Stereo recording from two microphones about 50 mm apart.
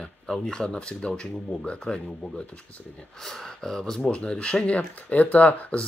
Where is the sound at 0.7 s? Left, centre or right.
Centre.